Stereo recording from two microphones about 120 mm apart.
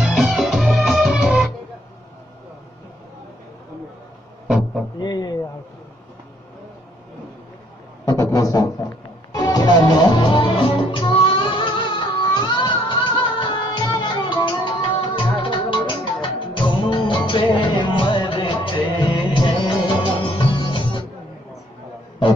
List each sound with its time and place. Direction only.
0.0 s music: 5° right (ahead or behind)
4.5 s music: 5° right (ahead or behind)
4.9 s a man's voice: 35° left (ahead or behind)
8.0 s a sound: 25° left (ahead or behind)
9.3 s music: 30° left (ahead or behind)